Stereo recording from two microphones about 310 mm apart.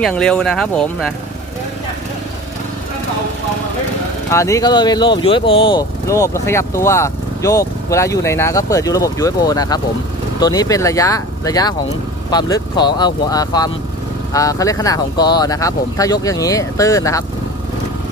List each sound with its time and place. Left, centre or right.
0.0 s speech: centre
4.3 s speech: centre